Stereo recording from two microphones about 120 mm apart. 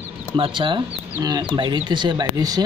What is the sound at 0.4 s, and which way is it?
Speech, 40° right (ahead or behind).